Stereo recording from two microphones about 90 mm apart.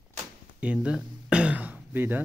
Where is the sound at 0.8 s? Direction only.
10° right (ahead or behind).